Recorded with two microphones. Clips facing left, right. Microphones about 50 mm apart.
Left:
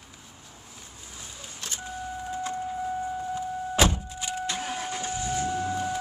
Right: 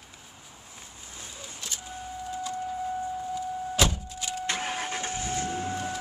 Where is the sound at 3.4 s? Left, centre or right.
Left.